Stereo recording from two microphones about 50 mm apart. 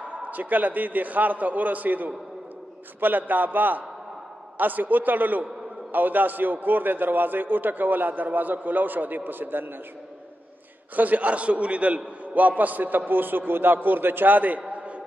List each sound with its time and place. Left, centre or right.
0.0 s a man's voice: right
11.0 s a man's voice: right